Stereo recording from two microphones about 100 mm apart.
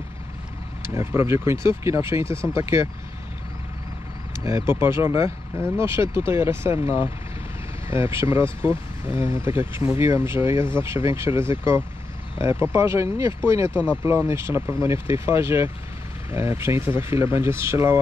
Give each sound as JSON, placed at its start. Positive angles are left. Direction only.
{"t": 0.8, "sound": "speech", "side_deg": -25}
{"t": 4.5, "sound": "speech", "side_deg": -25}
{"t": 7.9, "sound": "speech", "side_deg": -25}